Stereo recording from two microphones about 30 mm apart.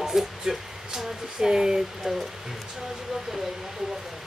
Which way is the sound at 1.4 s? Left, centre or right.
Right.